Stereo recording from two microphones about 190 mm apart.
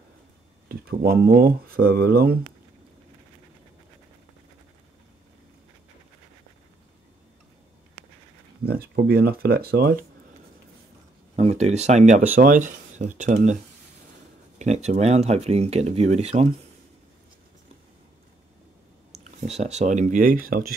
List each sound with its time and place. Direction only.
0.7 s speech: 55° right (ahead or behind)
8.6 s speech: 55° right (ahead or behind)
11.3 s speech: 35° right (ahead or behind)
14.6 s speech: 35° right (ahead or behind)
19.1 s speech: 35° right (ahead or behind)